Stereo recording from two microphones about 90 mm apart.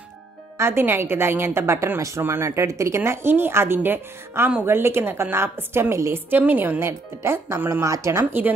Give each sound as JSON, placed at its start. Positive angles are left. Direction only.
{"t": 0.6, "sound": "a woman's voice", "side_deg": -25}